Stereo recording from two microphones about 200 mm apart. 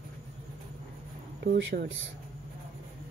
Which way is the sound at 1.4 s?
55° right (ahead or behind).